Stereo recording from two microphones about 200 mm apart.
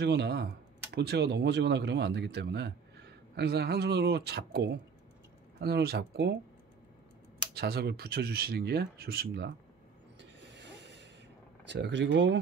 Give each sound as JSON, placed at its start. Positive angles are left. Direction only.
{"t": 0.0, "sound": "speech", "side_deg": -55}
{"t": 7.5, "sound": "speech", "side_deg": -50}
{"t": 10.5, "sound": "a sound", "side_deg": -60}
{"t": 11.6, "sound": "speech", "side_deg": -60}